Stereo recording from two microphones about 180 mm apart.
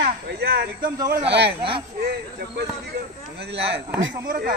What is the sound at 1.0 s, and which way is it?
Speech, 20° right (ahead or behind).